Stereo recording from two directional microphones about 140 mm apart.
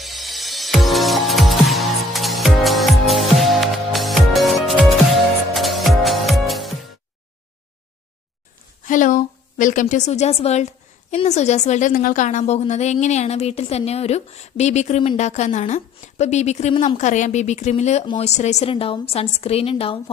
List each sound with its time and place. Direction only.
0.0 s music: centre (ahead or behind)
8.8 s a woman's voice: 70° left (ahead or behind); by 20.0 s 40° left (ahead or behind)